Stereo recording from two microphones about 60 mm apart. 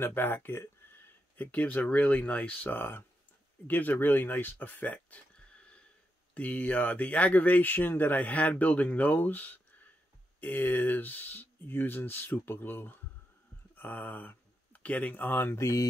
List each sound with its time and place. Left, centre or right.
0.0 s speech: left
1.3 s speech: left
2.8 s speech: left
15.5 s mantra: left